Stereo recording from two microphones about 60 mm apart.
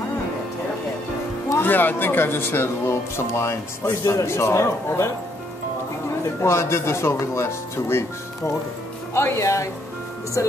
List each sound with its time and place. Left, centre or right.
1.6 s speech: left
3.8 s speech: left
6.4 s speech: left
9.1 s speech: left